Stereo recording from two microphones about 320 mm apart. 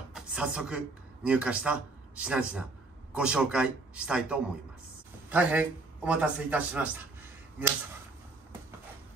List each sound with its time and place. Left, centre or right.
0.1 s a man's voice: centre